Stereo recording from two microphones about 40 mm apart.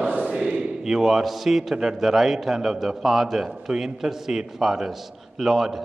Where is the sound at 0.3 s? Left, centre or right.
Centre.